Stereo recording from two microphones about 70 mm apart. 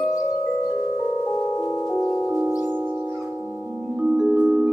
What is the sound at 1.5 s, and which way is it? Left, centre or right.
Music, left.